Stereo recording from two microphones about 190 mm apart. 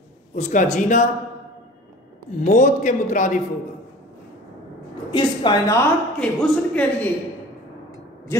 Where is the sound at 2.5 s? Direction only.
40° left (ahead or behind).